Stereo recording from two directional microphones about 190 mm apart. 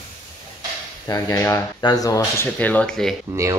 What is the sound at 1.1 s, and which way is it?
Speech, 20° left (ahead or behind).